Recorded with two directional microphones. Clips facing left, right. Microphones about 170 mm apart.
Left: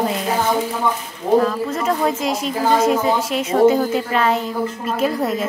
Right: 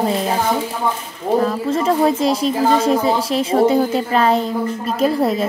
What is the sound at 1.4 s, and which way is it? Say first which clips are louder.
Speech: right 3 dB; 30° right (ahead or behind).